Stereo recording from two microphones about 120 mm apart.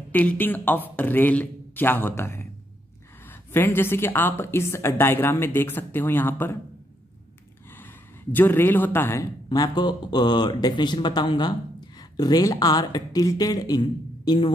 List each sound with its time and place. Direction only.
0.1 s speech: 10° left (ahead or behind)
7.7 s speech: 15° left (ahead or behind)
9.5 s speech: 35° left (ahead or behind)